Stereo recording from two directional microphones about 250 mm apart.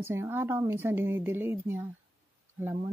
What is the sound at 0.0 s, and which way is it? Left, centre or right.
Speech, centre.